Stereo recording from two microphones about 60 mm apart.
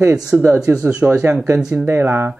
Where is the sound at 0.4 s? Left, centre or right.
Right.